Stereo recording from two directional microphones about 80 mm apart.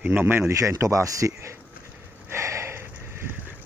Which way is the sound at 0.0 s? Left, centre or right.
Right.